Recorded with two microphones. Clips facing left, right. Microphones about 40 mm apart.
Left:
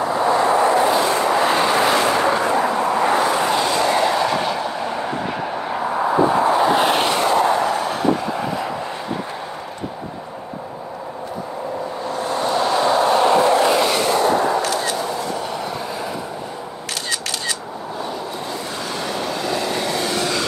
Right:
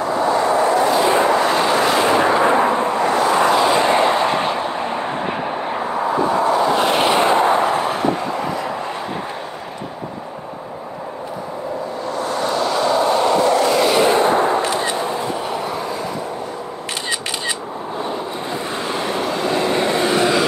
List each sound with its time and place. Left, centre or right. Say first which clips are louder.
0.5 s vehicle: even; centre
1.0 s vehicle: right 3 dB; right
1.3 s vehicle: right 1 dB; centre
2.0 s vehicle: right 2 dB; centre
2.4 s vehicle: right 3 dB; right
3.3 s vehicle: right 4 dB; centre
3.7 s vehicle: right 3 dB; right
6.2 s vehicle: even; centre
7.1 s a sound: right 2 dB; right
7.9 s vehicle: even; centre
12.4 s vehicle: left 1 dB; left
13.9 s train: right 3 dB; right
18.9 s vehicle: right 4 dB; right
19.2 s train: right 4 dB; centre